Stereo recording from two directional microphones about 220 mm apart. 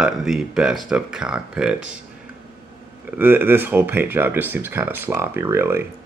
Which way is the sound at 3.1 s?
10° right (ahead or behind).